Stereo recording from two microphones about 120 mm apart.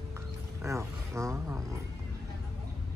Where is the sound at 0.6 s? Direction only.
25° right (ahead or behind).